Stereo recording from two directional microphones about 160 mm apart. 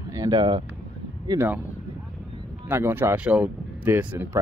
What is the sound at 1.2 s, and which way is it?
Speech, 20° right (ahead or behind).